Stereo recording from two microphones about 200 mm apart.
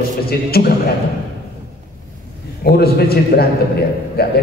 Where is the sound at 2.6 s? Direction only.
50° left (ahead or behind).